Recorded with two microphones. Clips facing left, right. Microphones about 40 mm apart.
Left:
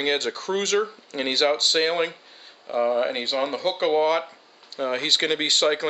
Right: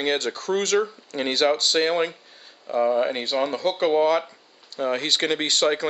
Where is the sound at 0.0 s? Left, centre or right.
Left.